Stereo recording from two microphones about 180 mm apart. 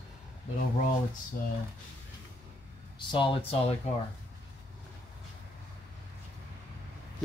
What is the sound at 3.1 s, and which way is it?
Speech, 30° left (ahead or behind).